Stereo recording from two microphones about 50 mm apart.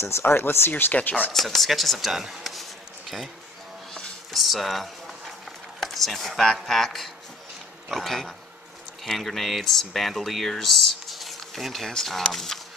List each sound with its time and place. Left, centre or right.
0.2 s speech: left
0.9 s speech: left
1.3 s speech: centre
4.3 s speech: centre